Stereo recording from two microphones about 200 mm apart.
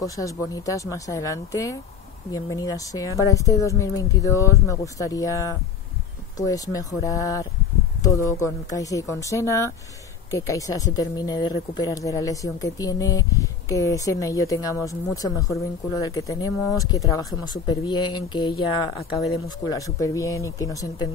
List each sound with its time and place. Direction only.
0.0 s speech: 15° left (ahead or behind)